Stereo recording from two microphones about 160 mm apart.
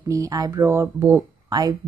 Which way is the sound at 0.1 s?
20° right (ahead or behind).